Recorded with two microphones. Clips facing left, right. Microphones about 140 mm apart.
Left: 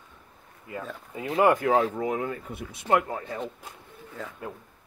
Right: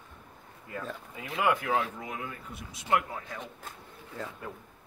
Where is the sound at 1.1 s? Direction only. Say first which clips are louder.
Left 7 dB; 35° left (ahead or behind); by 3.4 s 55° left (ahead or behind).